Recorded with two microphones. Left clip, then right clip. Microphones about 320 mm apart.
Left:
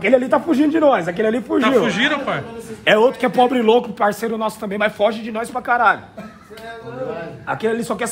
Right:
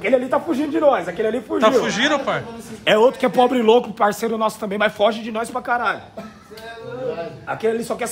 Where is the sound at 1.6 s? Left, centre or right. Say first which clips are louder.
Right 1 dB; centre.